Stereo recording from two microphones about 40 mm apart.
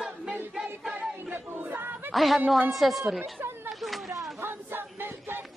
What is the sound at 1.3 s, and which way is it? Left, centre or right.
Battle cry, right.